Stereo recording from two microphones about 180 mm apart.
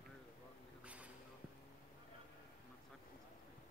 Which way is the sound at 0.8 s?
5° right (ahead or behind).